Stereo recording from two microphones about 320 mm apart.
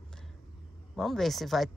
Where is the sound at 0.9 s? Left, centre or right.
Centre.